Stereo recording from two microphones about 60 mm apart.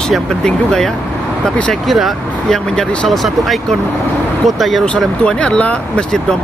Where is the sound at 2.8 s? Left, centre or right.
Centre.